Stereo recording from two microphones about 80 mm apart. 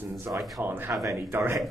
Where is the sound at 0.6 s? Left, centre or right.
Right.